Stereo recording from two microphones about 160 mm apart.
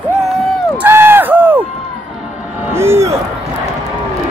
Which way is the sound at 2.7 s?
15° right (ahead or behind).